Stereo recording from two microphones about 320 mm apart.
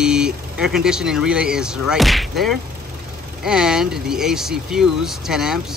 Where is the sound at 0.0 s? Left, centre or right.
Centre.